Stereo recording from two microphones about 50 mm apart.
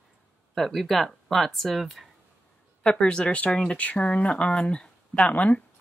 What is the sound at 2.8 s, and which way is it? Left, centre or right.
Speech, left.